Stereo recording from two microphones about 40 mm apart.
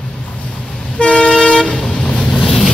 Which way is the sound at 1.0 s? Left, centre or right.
Left.